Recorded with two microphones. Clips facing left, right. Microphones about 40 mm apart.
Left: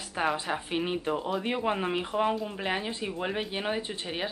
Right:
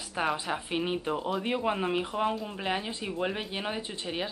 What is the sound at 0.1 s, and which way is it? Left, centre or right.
Speech, centre.